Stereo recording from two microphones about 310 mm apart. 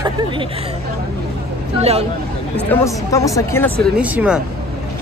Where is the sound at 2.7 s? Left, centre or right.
Centre.